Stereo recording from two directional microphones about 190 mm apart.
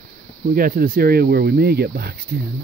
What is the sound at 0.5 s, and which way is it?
Speech, 50° right (ahead or behind).